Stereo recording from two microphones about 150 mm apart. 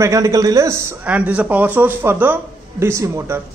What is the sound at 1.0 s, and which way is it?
A man's voice, 10° right (ahead or behind).